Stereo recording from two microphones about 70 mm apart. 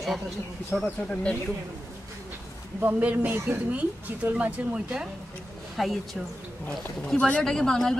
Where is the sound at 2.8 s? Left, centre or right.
Right.